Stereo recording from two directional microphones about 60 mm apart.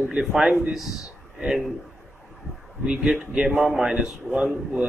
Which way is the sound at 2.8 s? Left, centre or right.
Centre.